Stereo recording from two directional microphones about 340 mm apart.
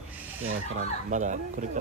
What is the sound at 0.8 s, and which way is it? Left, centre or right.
Speech, right.